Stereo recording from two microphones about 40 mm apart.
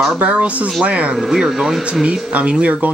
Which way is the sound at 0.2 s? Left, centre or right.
Right.